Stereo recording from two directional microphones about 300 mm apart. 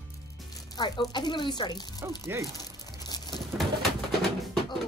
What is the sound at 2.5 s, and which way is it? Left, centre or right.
Crunch, centre.